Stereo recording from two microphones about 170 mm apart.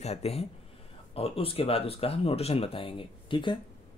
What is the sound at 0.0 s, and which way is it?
Speech, 40° left (ahead or behind).